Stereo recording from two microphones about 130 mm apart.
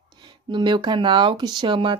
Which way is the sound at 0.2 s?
35° right (ahead or behind).